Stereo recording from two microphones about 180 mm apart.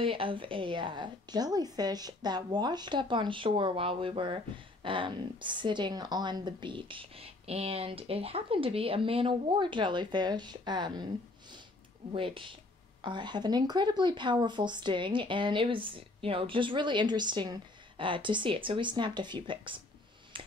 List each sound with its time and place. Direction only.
0.0 s speech: 30° right (ahead or behind)
12.1 s speech: 30° right (ahead or behind)
20.3 s finger snapping: 30° right (ahead or behind)